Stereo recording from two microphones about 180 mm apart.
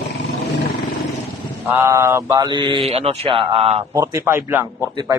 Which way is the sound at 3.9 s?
15° right (ahead or behind).